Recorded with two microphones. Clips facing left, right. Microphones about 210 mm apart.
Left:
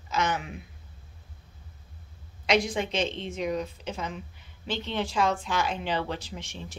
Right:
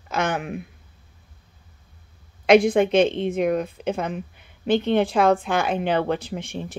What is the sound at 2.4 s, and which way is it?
A woman's voice, 55° right (ahead or behind).